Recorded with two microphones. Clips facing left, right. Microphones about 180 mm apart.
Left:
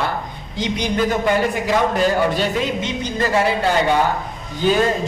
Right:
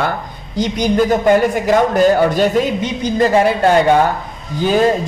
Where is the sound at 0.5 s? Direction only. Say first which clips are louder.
Right 6 dB; 40° right (ahead or behind).